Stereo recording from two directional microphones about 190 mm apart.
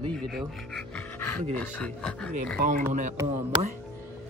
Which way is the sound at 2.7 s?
40° right (ahead or behind).